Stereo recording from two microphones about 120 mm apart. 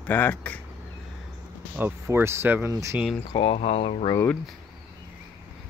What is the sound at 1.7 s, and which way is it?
Speech, 20° right (ahead or behind).